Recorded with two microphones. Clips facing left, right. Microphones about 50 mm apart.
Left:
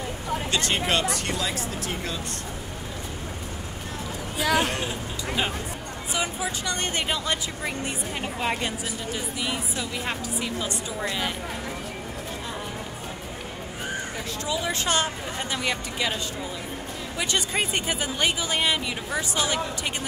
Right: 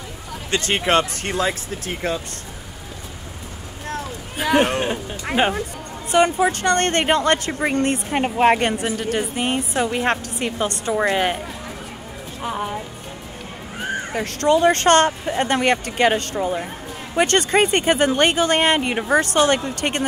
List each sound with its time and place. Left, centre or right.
0.7 s speech: right
4.6 s speech: right
6.1 s a woman's voice: right
14.1 s a woman's voice: right